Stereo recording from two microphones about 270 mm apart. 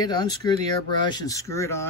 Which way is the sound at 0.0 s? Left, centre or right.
Centre.